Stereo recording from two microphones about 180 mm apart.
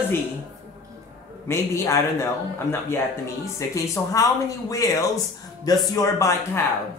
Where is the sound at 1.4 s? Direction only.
15° left (ahead or behind).